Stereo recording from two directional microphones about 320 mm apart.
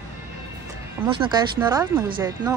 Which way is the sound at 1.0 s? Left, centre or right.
Centre.